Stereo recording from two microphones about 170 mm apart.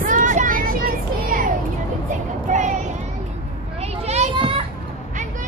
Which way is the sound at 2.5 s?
45° right (ahead or behind).